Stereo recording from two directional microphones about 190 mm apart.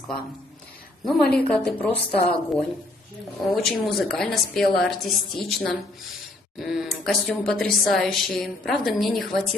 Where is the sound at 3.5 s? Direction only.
Centre (ahead or behind).